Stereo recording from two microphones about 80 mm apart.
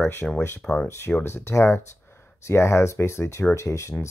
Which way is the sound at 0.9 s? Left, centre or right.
Left.